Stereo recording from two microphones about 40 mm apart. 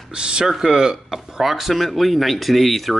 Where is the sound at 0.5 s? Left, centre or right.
Centre.